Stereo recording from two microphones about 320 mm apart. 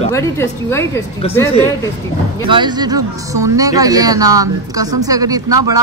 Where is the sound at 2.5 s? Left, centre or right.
Centre.